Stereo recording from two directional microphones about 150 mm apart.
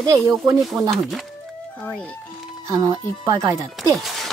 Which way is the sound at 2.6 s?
20° right (ahead or behind).